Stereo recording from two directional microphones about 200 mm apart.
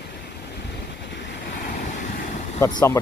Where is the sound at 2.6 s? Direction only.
15° left (ahead or behind).